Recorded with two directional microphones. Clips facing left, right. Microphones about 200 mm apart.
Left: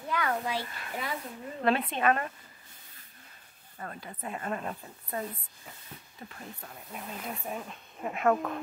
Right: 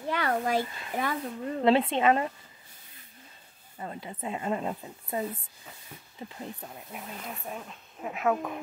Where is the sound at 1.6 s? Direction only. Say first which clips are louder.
Right 4 dB; 25° right (ahead or behind).